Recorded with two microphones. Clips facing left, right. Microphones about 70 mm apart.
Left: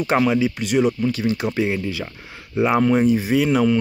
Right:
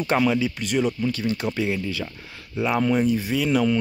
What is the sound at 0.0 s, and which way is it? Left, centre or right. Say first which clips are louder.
Speech: left 3 dB; centre.